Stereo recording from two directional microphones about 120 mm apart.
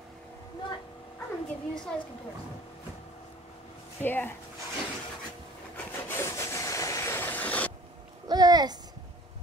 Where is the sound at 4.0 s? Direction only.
15° left (ahead or behind).